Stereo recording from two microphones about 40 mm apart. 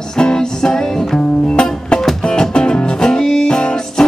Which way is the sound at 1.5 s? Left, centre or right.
Left.